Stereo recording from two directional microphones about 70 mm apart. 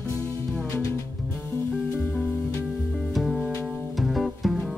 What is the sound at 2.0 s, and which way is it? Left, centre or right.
Music, centre.